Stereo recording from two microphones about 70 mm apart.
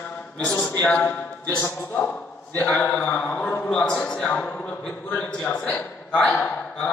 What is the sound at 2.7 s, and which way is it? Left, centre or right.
A man's voice, centre.